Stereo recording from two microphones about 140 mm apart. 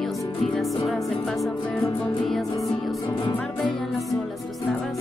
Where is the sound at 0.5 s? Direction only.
Centre (ahead or behind).